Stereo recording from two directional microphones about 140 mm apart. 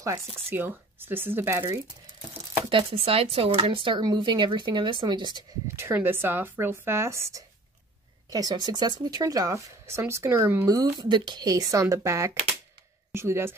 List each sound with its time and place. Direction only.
0.0 s speech: 20° right (ahead or behind)
2.7 s speech: 40° right (ahead or behind)
5.8 s speech: 15° right (ahead or behind)